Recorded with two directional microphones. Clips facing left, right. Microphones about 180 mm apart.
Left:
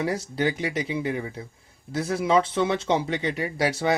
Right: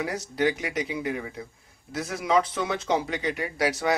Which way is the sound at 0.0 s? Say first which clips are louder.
Left 1 dB; 30° left (ahead or behind).